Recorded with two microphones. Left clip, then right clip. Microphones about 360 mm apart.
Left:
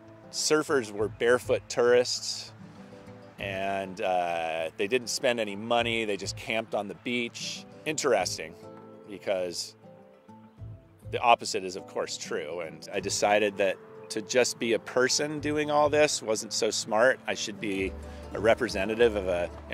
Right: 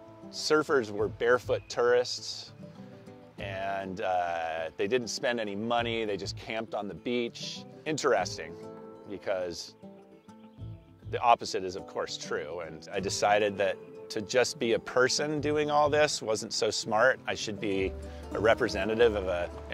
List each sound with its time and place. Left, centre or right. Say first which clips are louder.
0.3 s speech: left 1 dB; right
3.3 s speech: left 3 dB; right
11.1 s speech: left 2 dB; right